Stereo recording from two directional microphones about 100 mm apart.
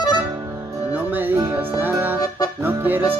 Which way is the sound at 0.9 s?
20° right (ahead or behind).